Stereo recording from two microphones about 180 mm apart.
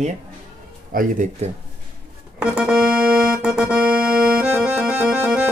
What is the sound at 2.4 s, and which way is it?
Organ, 5° right (ahead or behind).